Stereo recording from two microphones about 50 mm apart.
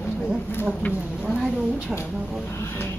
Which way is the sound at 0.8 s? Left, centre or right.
Left.